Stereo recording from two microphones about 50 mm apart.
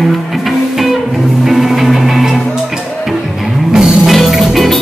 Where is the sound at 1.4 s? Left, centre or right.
Centre.